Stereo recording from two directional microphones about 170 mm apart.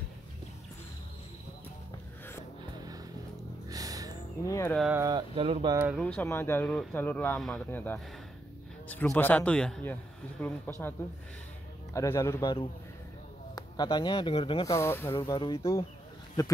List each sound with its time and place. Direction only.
3.6 s a sound: 20° right (ahead or behind)
4.5 s speech: 15° left (ahead or behind)
4.9 s speech: 20° right (ahead or behind)
5.3 s speech: 30° right (ahead or behind)
5.9 s speech: 10° left (ahead or behind)
11.9 s speech: 20° left (ahead or behind)
13.6 s speech: 25° left (ahead or behind)
14.7 s speech: 15° left (ahead or behind)
15.1 s speech: 25° left (ahead or behind)